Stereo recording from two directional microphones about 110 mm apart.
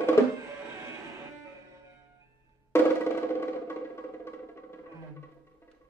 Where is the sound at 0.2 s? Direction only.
20° left (ahead or behind).